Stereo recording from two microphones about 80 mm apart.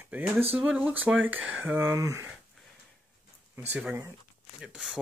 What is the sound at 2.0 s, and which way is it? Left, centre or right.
Speech, right.